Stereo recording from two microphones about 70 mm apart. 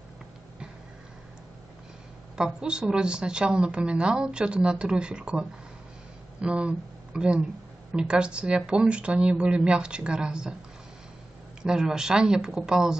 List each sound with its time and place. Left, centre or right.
2.3 s speech: centre
11.6 s speech: centre